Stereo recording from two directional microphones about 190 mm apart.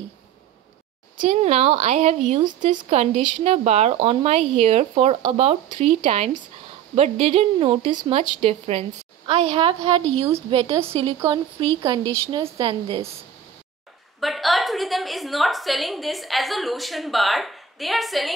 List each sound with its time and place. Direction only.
1.2 s a woman's voice: 35° right (ahead or behind)
14.2 s a woman's voice: centre (ahead or behind)